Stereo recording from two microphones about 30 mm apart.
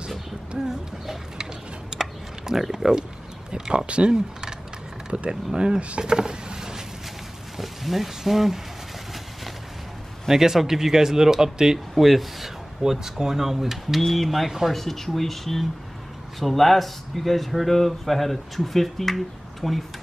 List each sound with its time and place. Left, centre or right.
0.7 s a sound: centre
2.7 s speech: right
3.7 s speech: right
4.1 s speech: right
5.8 s speech: right
6.0 s a sound: right
7.5 s speech: centre
10.3 s speech: centre
11.9 s a sound: centre
12.9 s speech: centre
14.0 s speech: centre